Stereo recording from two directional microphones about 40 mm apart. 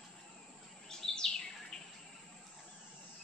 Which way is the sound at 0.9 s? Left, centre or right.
Centre.